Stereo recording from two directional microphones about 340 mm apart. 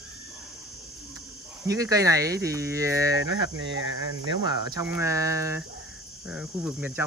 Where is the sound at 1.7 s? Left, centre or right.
Centre.